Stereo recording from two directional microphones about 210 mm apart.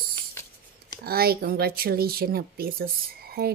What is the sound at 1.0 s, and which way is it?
Speech, 45° right (ahead or behind).